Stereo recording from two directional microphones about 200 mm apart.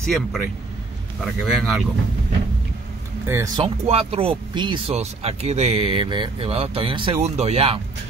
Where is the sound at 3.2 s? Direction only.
15° right (ahead or behind).